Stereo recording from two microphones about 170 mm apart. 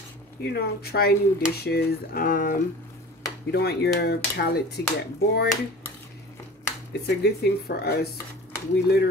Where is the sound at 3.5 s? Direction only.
70° left (ahead or behind).